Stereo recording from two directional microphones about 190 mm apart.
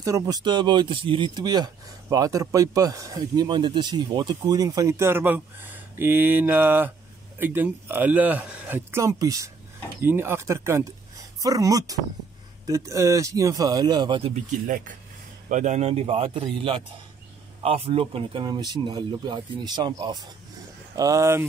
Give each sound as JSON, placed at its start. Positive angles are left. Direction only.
{"t": 0.0, "sound": "speech", "side_deg": -20}
{"t": 14.3, "sound": "a man's voice", "side_deg": -45}